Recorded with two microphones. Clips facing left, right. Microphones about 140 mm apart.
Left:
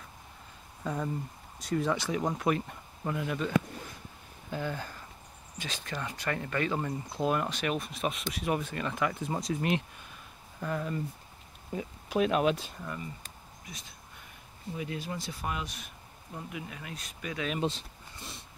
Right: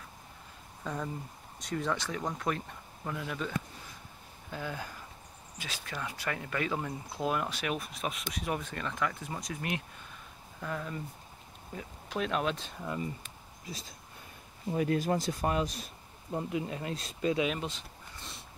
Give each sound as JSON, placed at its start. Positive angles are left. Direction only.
{"t": 0.8, "sound": "speech", "side_deg": 5}
{"t": 9.2, "sound": "speech", "side_deg": 30}
{"t": 10.6, "sound": "speech", "side_deg": 5}
{"t": 12.8, "sound": "speech", "side_deg": -20}
{"t": 13.7, "sound": "speech", "side_deg": -30}
{"t": 14.7, "sound": "speech", "side_deg": -50}
{"t": 17.6, "sound": "speech", "side_deg": 30}